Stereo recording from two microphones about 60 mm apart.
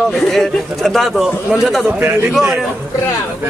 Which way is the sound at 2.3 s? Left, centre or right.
Centre.